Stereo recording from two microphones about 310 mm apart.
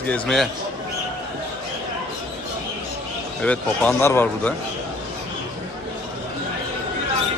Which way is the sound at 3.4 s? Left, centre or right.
Centre.